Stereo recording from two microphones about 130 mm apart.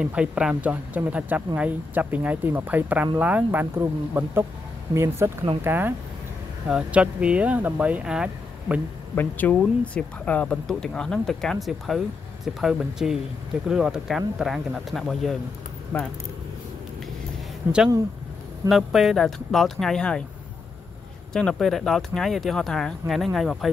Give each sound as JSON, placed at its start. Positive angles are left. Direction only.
{"t": 0.0, "sound": "speech", "side_deg": -5}
{"t": 9.1, "sound": "speech", "side_deg": 15}
{"t": 17.6, "sound": "speech", "side_deg": -15}
{"t": 18.7, "sound": "speech", "side_deg": 0}
{"t": 21.3, "sound": "speech", "side_deg": 5}